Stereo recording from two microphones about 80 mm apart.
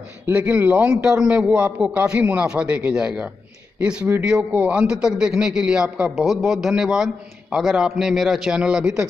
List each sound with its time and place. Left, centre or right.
0.3 s a man's voice: centre
4.5 s a man's voice: centre